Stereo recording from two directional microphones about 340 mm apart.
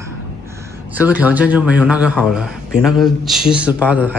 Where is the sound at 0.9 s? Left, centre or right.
Centre.